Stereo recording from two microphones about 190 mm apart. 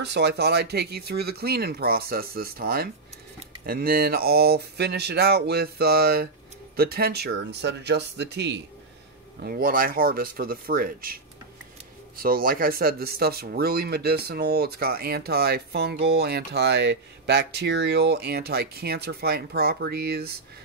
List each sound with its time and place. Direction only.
0.0 s speech: 65° right (ahead or behind)
9.4 s speech: 50° right (ahead or behind)
12.2 s speech: 50° right (ahead or behind)